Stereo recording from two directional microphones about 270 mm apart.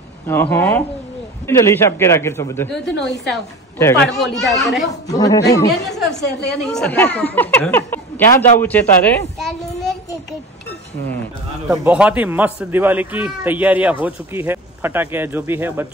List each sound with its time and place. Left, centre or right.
0.3 s a man's voice: centre
5.0 s a man's voice: centre
5.7 s a man's voice: centre
6.2 s a woman's voice: left
6.6 s a man's voice: centre
9.4 s a sound: centre
11.6 s a man's voice: centre